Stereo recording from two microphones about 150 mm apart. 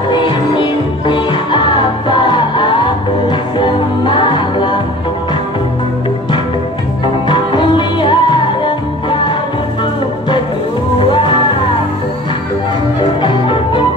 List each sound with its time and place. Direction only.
0.1 s music: 30° left (ahead or behind)
7.2 s music: 30° left (ahead or behind)
11.0 s music: 35° left (ahead or behind)
13.2 s music: 30° left (ahead or behind)